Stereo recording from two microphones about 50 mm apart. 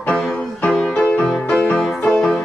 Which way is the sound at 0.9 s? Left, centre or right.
Left.